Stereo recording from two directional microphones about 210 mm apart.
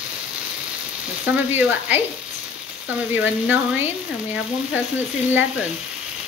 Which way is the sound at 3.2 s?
10° right (ahead or behind).